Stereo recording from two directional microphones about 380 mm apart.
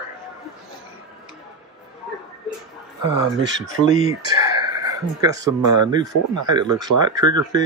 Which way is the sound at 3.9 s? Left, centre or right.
Right.